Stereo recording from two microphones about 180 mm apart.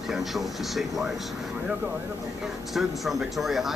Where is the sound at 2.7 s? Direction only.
Centre (ahead or behind).